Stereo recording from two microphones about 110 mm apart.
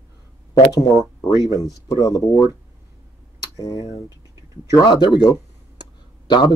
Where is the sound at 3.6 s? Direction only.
35° left (ahead or behind).